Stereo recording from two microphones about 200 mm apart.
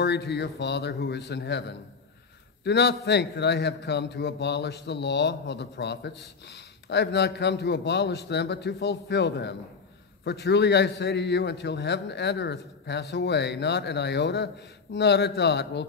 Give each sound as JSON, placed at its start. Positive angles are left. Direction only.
{"t": 0.0, "sound": "a man's voice", "side_deg": 55}